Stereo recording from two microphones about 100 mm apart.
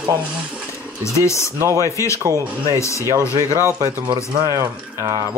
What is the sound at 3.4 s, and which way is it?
Speech, 30° right (ahead or behind).